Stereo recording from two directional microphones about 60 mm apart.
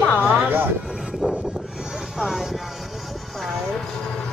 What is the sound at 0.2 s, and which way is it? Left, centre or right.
Music, right.